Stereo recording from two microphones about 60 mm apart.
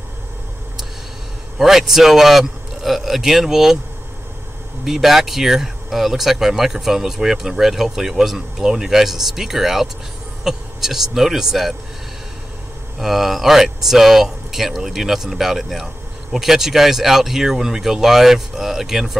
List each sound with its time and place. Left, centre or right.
1.6 s speech: centre
4.8 s speech: centre
13.0 s speech: centre